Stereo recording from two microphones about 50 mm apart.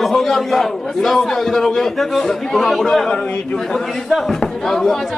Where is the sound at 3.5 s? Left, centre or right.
Centre.